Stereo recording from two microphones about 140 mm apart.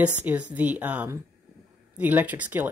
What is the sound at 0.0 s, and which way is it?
A woman's voice, 10° right (ahead or behind).